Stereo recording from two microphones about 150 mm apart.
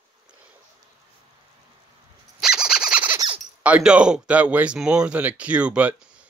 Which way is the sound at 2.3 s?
5° right (ahead or behind).